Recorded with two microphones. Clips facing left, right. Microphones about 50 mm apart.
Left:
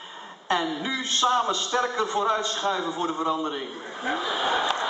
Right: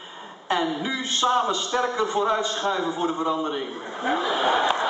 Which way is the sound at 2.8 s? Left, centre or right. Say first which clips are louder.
Right 2 dB; centre.